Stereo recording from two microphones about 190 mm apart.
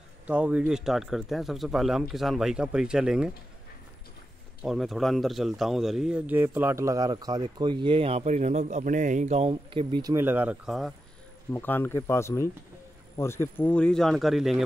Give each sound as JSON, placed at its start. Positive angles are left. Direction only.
{"t": 0.3, "sound": "speech", "side_deg": -5}
{"t": 4.6, "sound": "a man's voice", "side_deg": 0}
{"t": 10.1, "sound": "speech", "side_deg": -10}
{"t": 11.5, "sound": "speech", "side_deg": 10}